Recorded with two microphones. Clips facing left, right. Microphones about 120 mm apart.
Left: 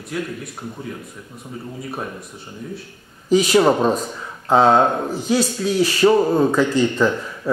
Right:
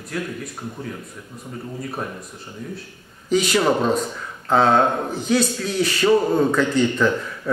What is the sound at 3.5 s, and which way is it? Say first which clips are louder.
Speech: left 3 dB; 15° left (ahead or behind).